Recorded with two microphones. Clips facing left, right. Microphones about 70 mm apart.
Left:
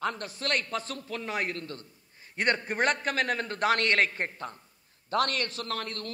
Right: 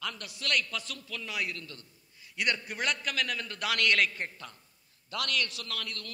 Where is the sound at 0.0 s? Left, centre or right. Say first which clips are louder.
Left 6 dB; left.